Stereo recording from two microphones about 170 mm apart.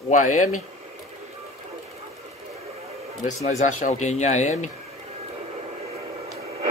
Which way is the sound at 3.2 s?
45° left (ahead or behind).